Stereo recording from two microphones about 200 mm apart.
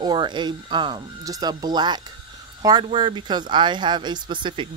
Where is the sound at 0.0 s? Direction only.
20° right (ahead or behind).